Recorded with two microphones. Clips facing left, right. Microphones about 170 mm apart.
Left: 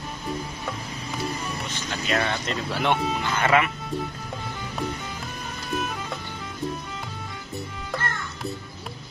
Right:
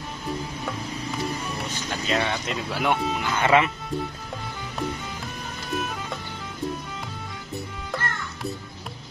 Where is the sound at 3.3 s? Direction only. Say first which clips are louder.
Right 2 dB; 20° right (ahead or behind).